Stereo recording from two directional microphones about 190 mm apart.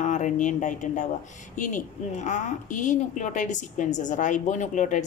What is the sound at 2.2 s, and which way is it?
Speech, 40° left (ahead or behind).